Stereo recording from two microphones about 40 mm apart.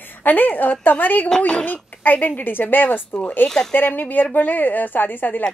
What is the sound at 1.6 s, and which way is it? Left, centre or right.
A woman's voice, left.